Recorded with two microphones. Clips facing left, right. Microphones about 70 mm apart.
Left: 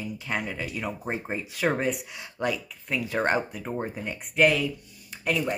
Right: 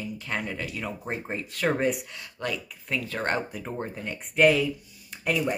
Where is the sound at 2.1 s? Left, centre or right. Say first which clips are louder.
Left 4 dB; centre.